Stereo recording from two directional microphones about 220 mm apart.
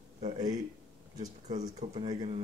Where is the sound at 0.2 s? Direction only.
20° right (ahead or behind).